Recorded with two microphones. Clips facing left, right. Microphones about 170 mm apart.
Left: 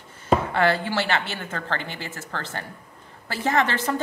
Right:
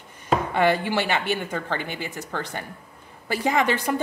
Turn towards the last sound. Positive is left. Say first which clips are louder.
# right 1 dB
turn(degrees=-15)  # may be behind; listen again after turning